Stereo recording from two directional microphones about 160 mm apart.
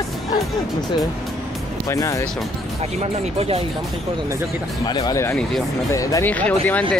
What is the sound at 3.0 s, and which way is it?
Speech, 40° right (ahead or behind).